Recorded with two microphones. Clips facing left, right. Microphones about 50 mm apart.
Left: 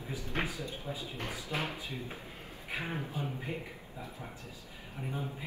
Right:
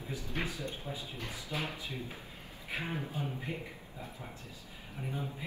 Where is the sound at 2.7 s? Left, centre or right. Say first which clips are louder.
Even; left.